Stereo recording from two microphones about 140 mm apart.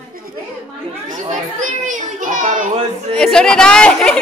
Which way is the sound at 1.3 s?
65° right (ahead or behind).